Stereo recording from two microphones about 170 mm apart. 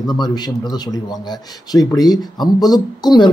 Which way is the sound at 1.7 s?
20° left (ahead or behind).